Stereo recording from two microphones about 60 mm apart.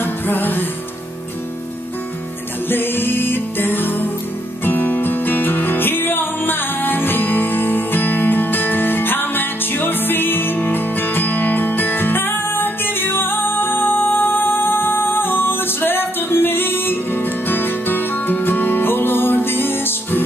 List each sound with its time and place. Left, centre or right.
0.0 s music: left
2.7 s music: left